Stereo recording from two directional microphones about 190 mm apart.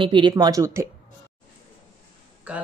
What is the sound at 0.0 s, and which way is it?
Speech, 25° right (ahead or behind).